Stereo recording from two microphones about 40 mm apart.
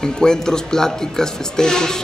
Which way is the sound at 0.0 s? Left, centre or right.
Centre.